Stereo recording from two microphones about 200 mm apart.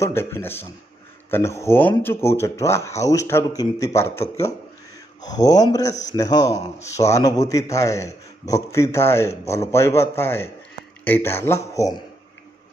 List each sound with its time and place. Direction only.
0.0 s a man's voice: 10° left (ahead or behind)